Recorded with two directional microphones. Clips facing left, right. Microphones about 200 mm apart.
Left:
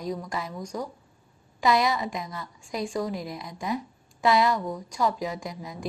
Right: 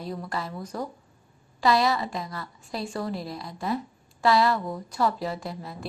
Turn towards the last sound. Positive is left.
turn(degrees=15)  # may be behind; listen again after turning